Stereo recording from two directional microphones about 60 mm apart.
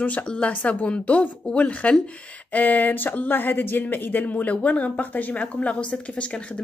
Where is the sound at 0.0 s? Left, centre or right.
Left.